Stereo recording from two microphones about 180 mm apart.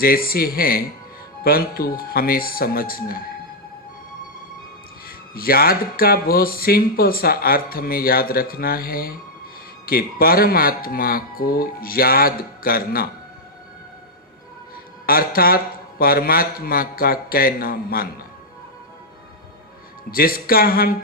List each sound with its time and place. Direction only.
0.0 s speech: 55° left (ahead or behind)
5.0 s speech: 55° left (ahead or behind)
15.0 s speech: 55° left (ahead or behind)
20.1 s speech: 55° left (ahead or behind)